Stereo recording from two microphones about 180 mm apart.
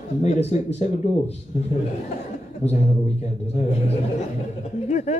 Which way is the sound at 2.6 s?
35° left (ahead or behind).